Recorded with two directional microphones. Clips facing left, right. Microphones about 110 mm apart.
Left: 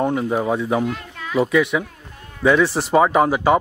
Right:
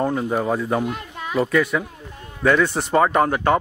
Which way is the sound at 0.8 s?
20° right (ahead or behind).